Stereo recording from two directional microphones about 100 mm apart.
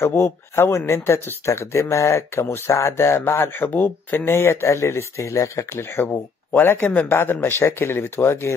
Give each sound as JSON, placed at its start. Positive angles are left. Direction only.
{"t": 0.0, "sound": "speech", "side_deg": 25}